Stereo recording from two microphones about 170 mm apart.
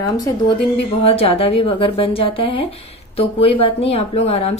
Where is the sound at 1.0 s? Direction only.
35° left (ahead or behind).